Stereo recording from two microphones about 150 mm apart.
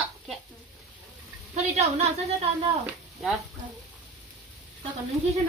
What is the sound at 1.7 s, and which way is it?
Speech, 45° right (ahead or behind).